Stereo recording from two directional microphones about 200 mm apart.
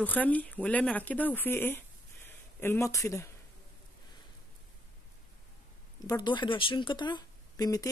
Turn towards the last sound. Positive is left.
turn(degrees=20)  # may be behind; listen again after turning